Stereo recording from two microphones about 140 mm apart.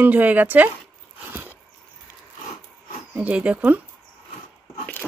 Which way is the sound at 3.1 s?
10° right (ahead or behind).